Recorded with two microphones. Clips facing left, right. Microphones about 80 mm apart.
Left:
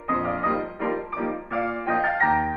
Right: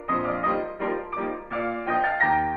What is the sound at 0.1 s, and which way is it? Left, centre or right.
Music, centre.